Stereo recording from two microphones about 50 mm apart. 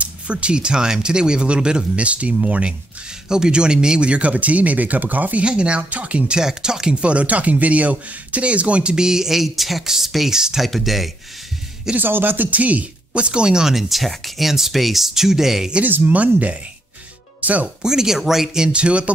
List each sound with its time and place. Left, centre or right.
0.0 s speech: right
3.3 s speech: centre; by 5.4 s right
5.4 s speech: right; by 11.1 s centre
12.0 s speech: right; by 15.7 s centre
15.8 s speech: right
17.4 s music: right
17.8 s speech: centre